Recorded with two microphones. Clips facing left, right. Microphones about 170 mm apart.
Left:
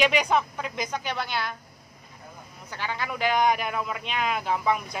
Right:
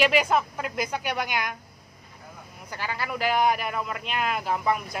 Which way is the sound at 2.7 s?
5° right (ahead or behind).